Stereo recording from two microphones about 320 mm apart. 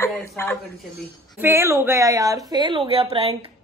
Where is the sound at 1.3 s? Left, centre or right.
Centre.